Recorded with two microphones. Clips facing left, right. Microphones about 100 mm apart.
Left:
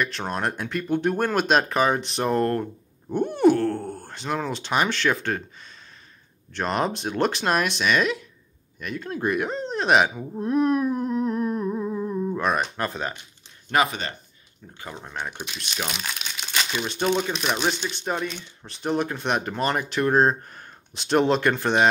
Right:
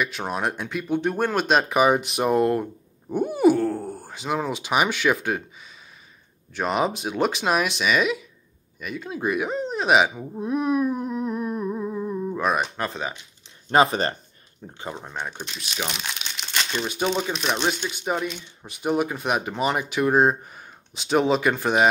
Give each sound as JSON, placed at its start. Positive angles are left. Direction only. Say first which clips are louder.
{"t": 0.0, "sound": "speech", "louder": "even", "side_deg": -5}
{"t": 6.5, "sound": "speech", "louder": "right 1 dB", "side_deg": -5}
{"t": 13.7, "sound": "speech", "louder": "right 4 dB", "side_deg": -30}
{"t": 15.1, "sound": "speech", "louder": "even", "side_deg": 5}